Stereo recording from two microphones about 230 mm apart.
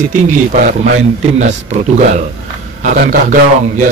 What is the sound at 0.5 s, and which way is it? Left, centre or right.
A man's voice, right.